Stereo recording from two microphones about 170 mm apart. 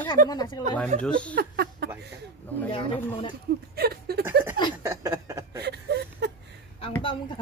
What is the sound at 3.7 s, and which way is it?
Speech, 65° right (ahead or behind).